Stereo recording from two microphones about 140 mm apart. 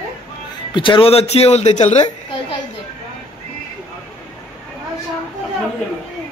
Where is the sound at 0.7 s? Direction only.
35° left (ahead or behind); by 2.1 s 55° left (ahead or behind).